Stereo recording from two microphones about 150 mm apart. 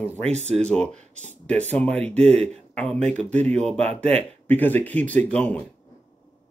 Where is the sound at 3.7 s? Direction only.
45° right (ahead or behind).